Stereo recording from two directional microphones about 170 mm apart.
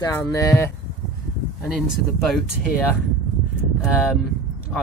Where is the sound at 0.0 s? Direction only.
20° left (ahead or behind).